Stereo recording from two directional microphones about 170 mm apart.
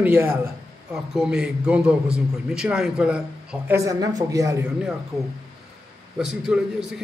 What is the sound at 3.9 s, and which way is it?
Speech, 20° right (ahead or behind).